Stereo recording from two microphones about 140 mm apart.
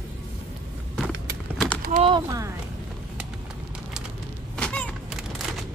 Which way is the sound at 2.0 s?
40° right (ahead or behind).